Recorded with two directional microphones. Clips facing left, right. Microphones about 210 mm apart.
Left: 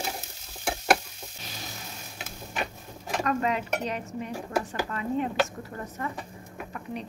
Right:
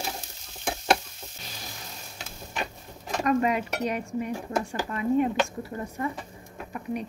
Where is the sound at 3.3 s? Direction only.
10° right (ahead or behind).